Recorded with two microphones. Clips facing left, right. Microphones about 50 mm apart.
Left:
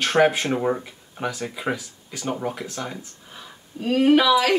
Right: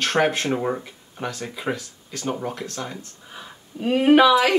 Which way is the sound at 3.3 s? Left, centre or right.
Centre.